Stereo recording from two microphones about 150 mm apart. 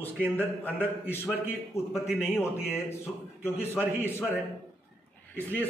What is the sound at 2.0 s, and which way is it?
Speech, 5° right (ahead or behind).